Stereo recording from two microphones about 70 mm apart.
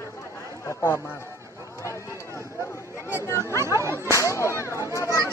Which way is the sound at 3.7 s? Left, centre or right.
Right.